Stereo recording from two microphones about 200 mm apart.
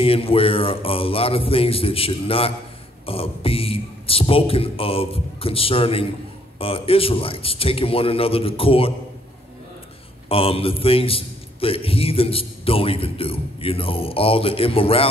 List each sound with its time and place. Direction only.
0.0 s a man's voice: 30° left (ahead or behind)
10.2 s a man's voice: 30° left (ahead or behind)